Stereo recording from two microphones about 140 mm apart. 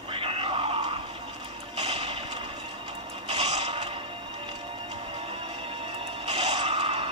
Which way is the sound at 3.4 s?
50° right (ahead or behind).